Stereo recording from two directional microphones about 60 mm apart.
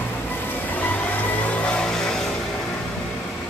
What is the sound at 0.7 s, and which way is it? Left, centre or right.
Vehicle, left.